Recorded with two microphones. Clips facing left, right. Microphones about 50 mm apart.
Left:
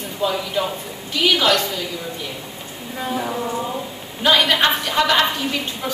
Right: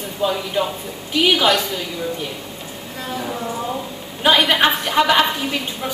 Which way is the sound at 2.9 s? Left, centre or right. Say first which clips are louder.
Left 3 dB; centre.